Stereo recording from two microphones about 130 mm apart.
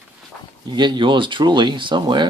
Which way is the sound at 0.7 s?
35° right (ahead or behind).